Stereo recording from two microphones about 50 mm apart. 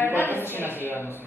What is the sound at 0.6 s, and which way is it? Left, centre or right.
Speech, right.